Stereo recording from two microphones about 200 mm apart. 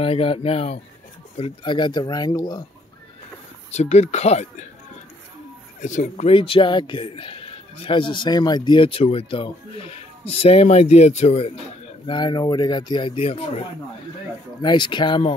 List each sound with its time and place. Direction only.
0.0 s speech: 30° left (ahead or behind)
3.7 s speech: 35° left (ahead or behind)
5.8 s speech: 40° left (ahead or behind)
12.1 s speech: 20° left (ahead or behind)